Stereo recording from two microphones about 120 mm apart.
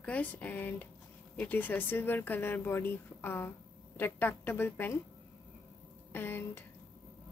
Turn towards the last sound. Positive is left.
turn(degrees=15)  # may be behind; listen again after turning